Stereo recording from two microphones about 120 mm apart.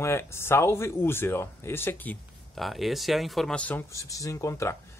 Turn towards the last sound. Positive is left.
turn(degrees=25)  # may be behind; listen again after turning